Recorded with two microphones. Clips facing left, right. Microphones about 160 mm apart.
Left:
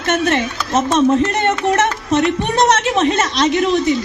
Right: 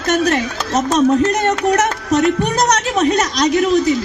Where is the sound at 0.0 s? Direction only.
40° right (ahead or behind).